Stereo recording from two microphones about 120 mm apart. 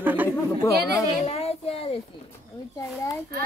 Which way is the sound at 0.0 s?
15° right (ahead or behind).